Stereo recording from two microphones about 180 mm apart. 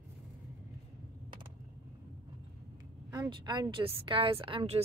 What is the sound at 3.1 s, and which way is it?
A woman's voice, 20° right (ahead or behind).